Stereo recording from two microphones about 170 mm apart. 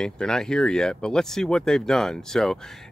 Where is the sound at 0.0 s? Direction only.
5° left (ahead or behind).